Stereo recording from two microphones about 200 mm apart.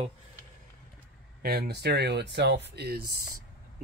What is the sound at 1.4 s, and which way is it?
Speech, 50° right (ahead or behind).